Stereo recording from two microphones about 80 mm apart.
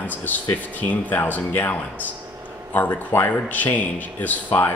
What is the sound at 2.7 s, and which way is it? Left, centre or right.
Speech, left.